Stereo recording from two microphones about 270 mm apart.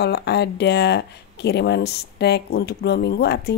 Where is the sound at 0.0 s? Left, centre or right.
Left.